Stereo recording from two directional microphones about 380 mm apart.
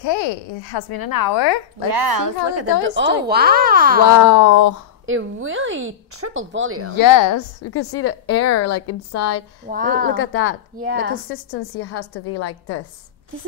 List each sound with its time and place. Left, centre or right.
0.0 s a child's voice: left
1.9 s a woman's voice: right
2.4 s a woman's voice: right
4.2 s speech: left
5.0 s speech: right
7.0 s speech: left
7.6 s a woman's voice: left
9.7 s a woman's voice: right
10.1 s a woman's voice: left
10.8 s a woman's voice: right
11.5 s a woman's voice: left